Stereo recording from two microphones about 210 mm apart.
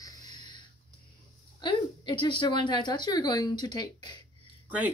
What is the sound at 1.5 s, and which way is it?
A woman's voice, 20° left (ahead or behind).